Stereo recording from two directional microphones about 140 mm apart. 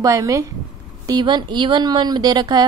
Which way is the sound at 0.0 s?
25° right (ahead or behind).